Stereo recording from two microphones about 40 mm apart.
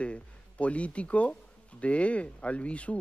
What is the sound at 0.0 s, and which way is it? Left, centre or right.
Speech, left.